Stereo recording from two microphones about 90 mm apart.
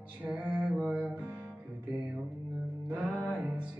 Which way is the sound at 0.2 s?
15° right (ahead or behind).